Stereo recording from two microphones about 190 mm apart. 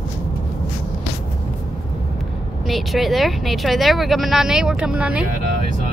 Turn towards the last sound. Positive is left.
turn(degrees=-5)  # may be behind; listen again after turning